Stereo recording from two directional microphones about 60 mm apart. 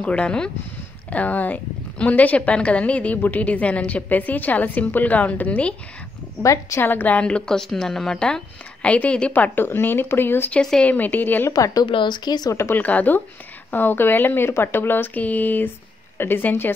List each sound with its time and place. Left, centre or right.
0.0 s speech: centre
1.1 s a woman's voice: left
6.4 s a woman's voice: left
6.8 s speech: left
7.2 s speech: centre
8.8 s a woman's voice: left
9.3 s a woman's voice: left
11.5 s speech: left
12.7 s a woman's voice: left